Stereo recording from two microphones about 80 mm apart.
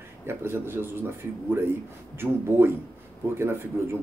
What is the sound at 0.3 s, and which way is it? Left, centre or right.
Speech, right.